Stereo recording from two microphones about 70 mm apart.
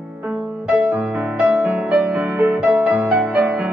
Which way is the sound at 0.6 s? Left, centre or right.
Centre.